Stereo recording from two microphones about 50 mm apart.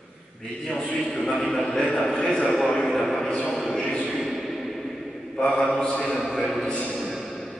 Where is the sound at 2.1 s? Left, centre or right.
Left.